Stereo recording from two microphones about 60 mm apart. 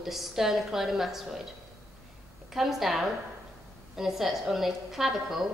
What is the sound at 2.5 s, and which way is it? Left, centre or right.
A woman's voice, centre.